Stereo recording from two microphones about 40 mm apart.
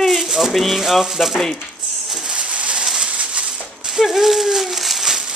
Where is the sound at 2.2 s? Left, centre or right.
Right.